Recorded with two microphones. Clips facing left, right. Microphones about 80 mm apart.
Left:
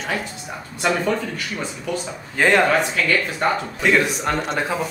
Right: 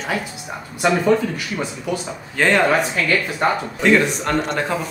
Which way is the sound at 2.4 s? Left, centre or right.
Centre.